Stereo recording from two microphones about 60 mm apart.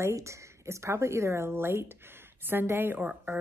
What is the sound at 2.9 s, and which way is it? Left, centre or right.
Speech, right.